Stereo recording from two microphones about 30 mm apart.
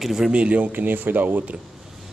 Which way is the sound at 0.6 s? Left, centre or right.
Right.